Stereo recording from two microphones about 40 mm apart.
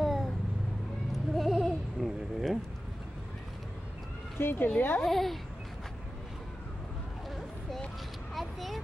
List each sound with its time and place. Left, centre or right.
0.0 s vehicle: centre
1.3 s a sound: centre
4.4 s speech: left
4.7 s speech: left
5.0 s a child's voice: centre
8.4 s vehicle: centre